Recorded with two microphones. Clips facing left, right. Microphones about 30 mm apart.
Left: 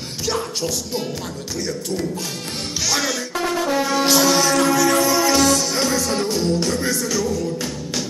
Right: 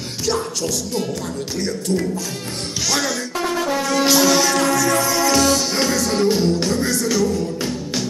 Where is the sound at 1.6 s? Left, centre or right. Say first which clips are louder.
Right 3 dB; centre.